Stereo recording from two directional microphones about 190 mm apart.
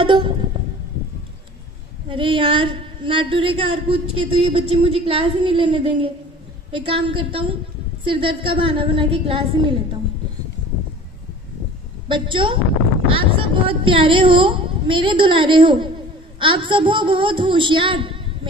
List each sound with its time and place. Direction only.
0.0 s music: 25° right (ahead or behind)
2.0 s a woman's voice: 25° right (ahead or behind)
12.1 s a woman's voice: 25° right (ahead or behind)